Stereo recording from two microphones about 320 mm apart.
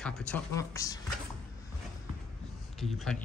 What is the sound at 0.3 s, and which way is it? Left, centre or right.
Speech, centre.